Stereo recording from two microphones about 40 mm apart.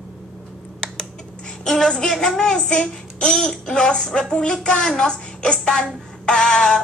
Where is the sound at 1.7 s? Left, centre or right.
Centre.